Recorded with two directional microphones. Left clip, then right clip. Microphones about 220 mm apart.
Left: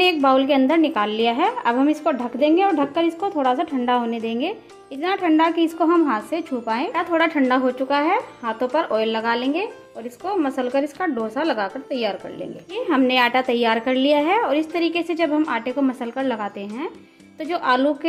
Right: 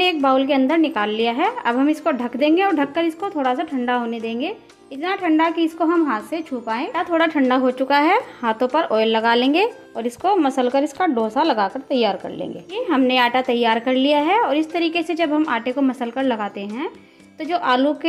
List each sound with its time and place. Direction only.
0.0 s a woman's voice: centre (ahead or behind)
2.8 s a woman's voice: centre (ahead or behind)
6.9 s a woman's voice: 10° right (ahead or behind)
12.8 s a woman's voice: 5° right (ahead or behind)